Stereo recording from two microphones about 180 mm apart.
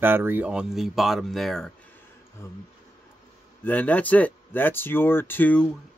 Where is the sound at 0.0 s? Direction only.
10° right (ahead or behind).